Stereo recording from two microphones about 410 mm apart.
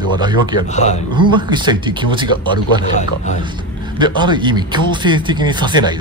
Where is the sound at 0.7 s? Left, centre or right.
Centre.